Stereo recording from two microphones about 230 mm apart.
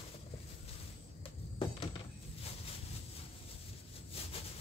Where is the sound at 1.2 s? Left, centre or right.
Left.